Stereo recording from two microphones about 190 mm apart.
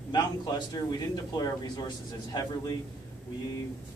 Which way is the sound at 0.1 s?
20° left (ahead or behind).